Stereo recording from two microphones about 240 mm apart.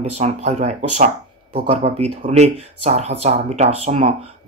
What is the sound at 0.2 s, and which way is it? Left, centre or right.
Speech, right.